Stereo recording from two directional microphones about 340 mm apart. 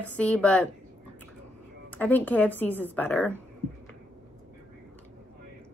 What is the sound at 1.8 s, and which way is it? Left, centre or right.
A woman's voice, centre.